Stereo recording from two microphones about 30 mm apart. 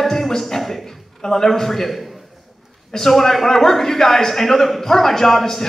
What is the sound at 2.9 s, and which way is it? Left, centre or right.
A man's voice, centre.